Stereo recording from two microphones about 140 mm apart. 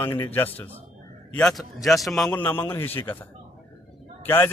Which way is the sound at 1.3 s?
5° left (ahead or behind).